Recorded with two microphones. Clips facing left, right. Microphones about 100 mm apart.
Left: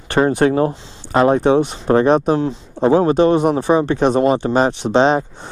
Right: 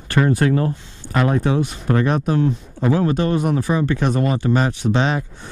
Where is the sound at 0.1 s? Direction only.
25° left (ahead or behind).